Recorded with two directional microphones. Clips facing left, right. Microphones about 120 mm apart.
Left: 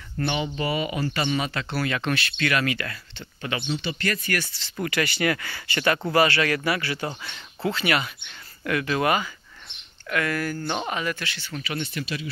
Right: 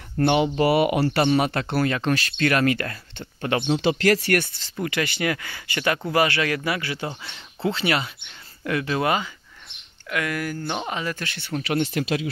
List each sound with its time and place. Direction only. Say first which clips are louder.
0.2 s speech: right 7 dB; 60° right (ahead or behind)
1.4 s speech: right 5 dB; 55° right (ahead or behind)
3.7 s speech: right 10 dB; 85° right
4.7 s speech: even; 20° right (ahead or behind)
11.1 s speech: right 4 dB; 50° right (ahead or behind); by 12.3 s 90° right